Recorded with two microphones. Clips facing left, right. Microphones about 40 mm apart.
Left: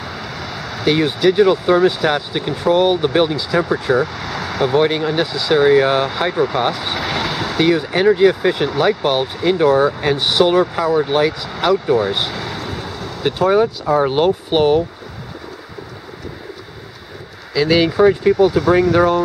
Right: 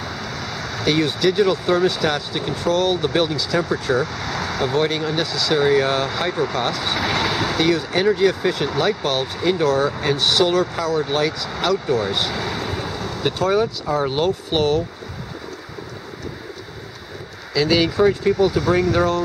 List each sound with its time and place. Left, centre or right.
0.0 s speech: centre
7.6 s speech: centre
12.4 s speech: centre
17.6 s speech: centre